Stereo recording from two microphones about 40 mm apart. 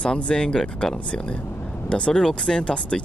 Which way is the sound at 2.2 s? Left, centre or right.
Centre.